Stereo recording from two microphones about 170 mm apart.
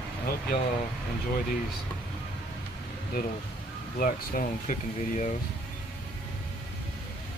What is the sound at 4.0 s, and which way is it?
Speech, 50° left (ahead or behind).